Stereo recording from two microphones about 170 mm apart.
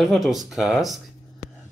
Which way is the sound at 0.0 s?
Centre (ahead or behind).